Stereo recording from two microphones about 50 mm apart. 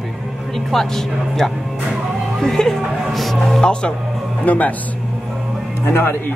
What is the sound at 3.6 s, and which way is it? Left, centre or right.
Speech, centre.